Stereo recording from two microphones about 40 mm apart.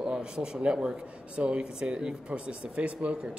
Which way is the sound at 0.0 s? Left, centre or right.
Right.